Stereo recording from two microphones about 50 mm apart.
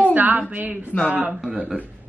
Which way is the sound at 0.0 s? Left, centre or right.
Right.